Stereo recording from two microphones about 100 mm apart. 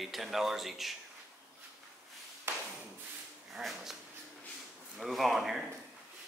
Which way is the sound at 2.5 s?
25° right (ahead or behind).